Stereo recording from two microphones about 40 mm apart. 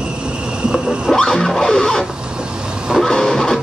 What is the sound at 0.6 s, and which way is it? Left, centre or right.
Whale vocalization, centre.